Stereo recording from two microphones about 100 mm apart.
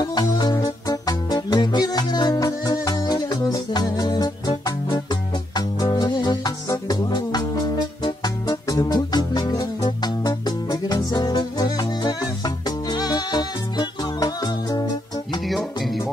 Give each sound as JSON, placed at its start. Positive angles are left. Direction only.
{"t": 0.0, "sound": "music", "side_deg": 45}
{"t": 15.4, "sound": "music", "side_deg": 0}